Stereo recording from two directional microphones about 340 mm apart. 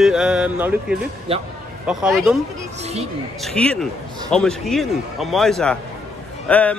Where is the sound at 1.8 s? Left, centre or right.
Centre.